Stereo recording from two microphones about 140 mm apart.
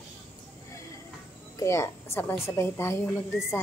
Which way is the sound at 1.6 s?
20° left (ahead or behind).